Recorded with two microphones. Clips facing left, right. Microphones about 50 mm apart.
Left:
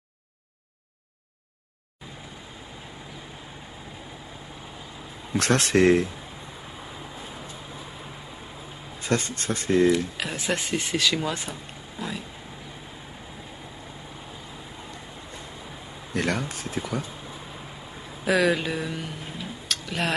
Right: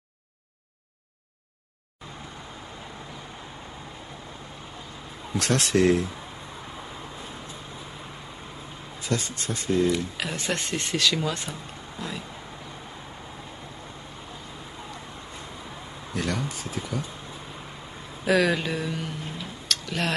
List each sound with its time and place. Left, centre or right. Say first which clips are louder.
5.4 s speech: left 2 dB; left
6.8 s vehicle: even; centre
9.0 s speech: left 3 dB; left
9.8 s speech: left 3 dB; centre
12.0 s a sound: left 2 dB; centre
16.2 s speech: left 3 dB; left
18.2 s a sound: even; centre